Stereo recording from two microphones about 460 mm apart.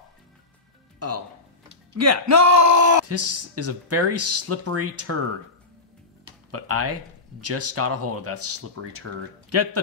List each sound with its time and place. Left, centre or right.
0.9 s music: right
2.0 s speech: right
6.5 s speech: right